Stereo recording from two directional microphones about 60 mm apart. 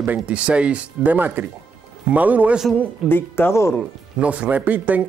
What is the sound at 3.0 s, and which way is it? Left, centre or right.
Speech, left.